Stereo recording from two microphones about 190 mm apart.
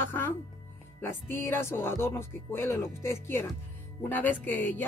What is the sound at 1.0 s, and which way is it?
Speech, 10° left (ahead or behind).